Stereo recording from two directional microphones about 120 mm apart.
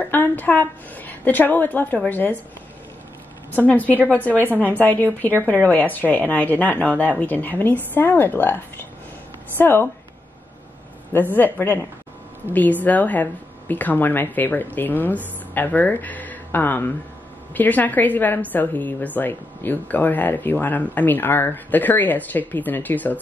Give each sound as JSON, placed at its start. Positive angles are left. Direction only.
{"t": 0.0, "sound": "a woman's voice", "side_deg": 15}
{"t": 3.5, "sound": "a woman's voice", "side_deg": 15}
{"t": 11.1, "sound": "a woman's voice", "side_deg": 15}